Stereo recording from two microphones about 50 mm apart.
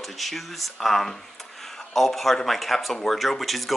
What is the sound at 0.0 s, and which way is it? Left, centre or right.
Speech, centre.